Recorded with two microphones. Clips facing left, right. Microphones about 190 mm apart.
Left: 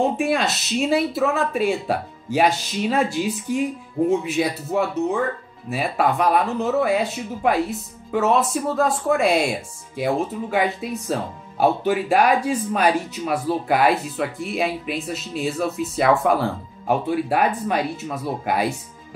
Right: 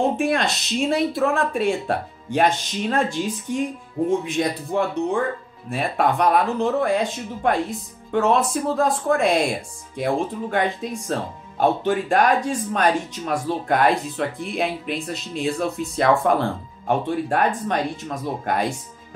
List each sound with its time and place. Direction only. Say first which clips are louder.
0.0 s speech: even; centre (ahead or behind)